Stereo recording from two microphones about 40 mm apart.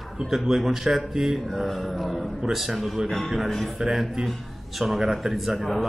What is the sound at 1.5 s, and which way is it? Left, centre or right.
Speech, centre.